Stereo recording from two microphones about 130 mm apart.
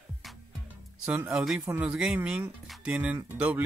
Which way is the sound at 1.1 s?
10° right (ahead or behind).